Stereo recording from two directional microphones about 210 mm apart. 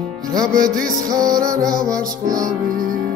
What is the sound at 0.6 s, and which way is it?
Music, 40° right (ahead or behind).